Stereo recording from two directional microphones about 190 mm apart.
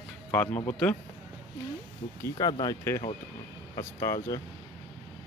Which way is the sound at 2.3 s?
20° left (ahead or behind).